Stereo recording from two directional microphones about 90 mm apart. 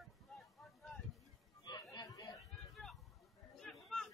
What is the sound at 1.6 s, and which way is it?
Chatter, 50° left (ahead or behind).